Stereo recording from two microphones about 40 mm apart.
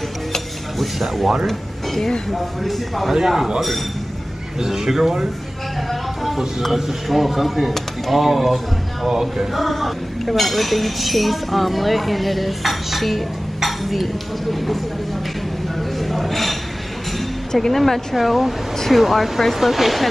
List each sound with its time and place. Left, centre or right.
0.3 s mechanisms: centre
1.5 s speech: centre
3.2 s speech: centre
4.6 s speech: centre
5.9 s speech: centre
9.6 s speech: centre
16.0 s a sound: centre
17.5 s speech: centre